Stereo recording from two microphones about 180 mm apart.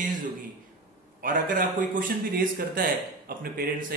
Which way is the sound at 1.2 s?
50° right (ahead or behind).